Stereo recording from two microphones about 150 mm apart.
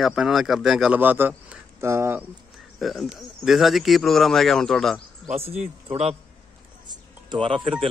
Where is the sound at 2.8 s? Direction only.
Centre (ahead or behind).